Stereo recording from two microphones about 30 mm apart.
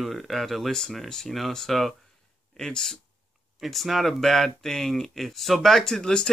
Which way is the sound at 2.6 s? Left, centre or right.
Left.